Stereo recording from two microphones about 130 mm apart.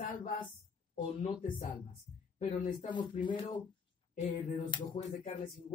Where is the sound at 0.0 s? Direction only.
85° left.